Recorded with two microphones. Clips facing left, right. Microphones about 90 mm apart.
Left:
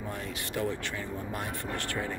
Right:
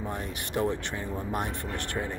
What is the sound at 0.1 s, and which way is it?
Speech, 25° right (ahead or behind).